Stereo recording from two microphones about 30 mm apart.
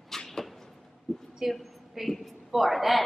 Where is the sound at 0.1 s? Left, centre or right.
Centre.